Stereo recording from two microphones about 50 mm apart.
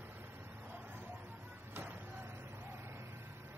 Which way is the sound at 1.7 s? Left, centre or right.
Right.